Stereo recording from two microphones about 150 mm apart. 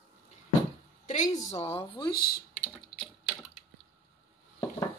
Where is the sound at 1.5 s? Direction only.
40° left (ahead or behind).